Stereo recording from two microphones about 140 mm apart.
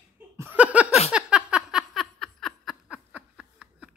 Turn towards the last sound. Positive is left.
turn(degrees=-5)  # may be behind; listen again after turning